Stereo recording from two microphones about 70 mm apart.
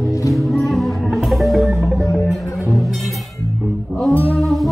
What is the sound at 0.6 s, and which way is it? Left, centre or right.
Music, centre.